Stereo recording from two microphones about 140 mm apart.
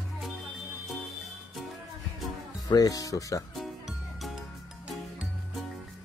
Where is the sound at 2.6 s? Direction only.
25° left (ahead or behind).